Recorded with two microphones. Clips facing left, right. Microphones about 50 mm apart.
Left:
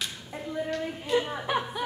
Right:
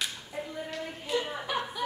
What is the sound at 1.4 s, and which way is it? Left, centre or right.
Music, left.